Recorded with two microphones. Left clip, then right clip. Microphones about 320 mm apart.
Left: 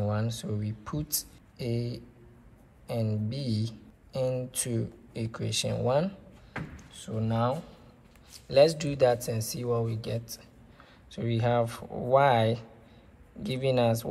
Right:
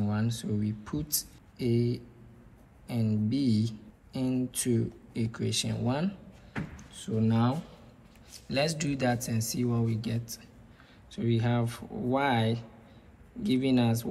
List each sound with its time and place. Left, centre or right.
0.0 s speech: centre